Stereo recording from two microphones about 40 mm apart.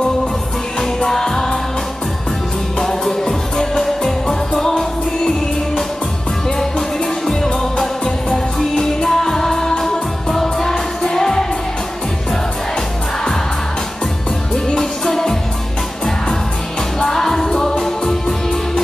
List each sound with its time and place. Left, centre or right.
0.7 s music: centre
2.8 s music: centre
7.2 s music: centre
14.5 s music: centre
17.0 s music: centre